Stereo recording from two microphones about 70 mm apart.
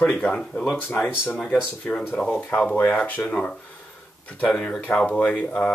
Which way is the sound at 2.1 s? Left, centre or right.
Centre.